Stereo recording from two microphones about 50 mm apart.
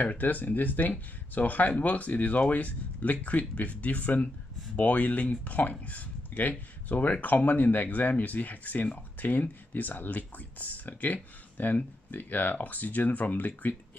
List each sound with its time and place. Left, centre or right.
0.2 s speech: left